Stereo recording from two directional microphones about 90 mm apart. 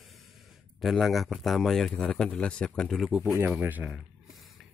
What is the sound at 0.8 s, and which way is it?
Speech, centre (ahead or behind).